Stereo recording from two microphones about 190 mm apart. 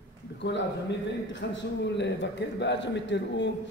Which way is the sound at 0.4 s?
70° left (ahead or behind).